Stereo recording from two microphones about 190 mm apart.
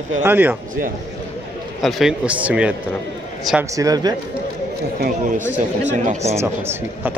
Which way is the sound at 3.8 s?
20° right (ahead or behind).